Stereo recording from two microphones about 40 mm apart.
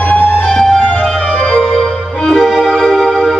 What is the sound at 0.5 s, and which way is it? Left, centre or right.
Music, centre.